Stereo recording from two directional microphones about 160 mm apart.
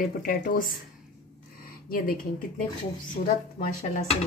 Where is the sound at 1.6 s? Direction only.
65° left (ahead or behind).